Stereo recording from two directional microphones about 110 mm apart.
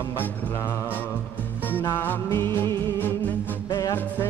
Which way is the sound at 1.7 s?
20° left (ahead or behind).